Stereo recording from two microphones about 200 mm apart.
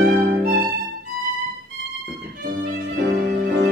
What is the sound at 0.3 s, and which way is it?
Music, 50° right (ahead or behind).